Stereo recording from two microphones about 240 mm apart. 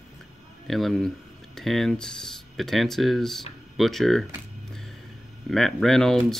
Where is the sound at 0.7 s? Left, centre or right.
Centre.